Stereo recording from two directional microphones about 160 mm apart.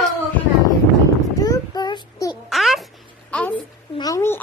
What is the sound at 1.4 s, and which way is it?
Child singing, 25° left (ahead or behind).